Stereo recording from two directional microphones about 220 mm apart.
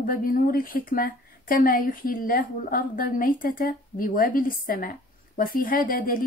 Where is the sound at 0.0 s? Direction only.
40° left (ahead or behind).